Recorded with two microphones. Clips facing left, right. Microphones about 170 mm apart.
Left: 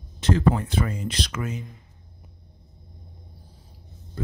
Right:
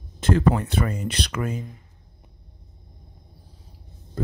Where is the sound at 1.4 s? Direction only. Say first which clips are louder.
Right 3 dB; 45° right (ahead or behind).